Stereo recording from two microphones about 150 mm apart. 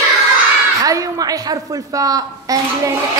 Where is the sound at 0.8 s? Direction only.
25° right (ahead or behind).